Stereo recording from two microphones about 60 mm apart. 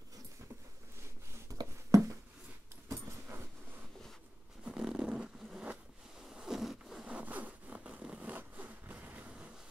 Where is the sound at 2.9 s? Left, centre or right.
Right.